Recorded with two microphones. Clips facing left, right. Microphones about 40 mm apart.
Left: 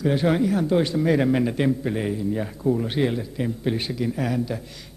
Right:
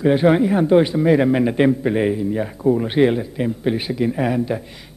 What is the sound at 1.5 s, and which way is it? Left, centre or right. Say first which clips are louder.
A man's voice: right 6 dB; right.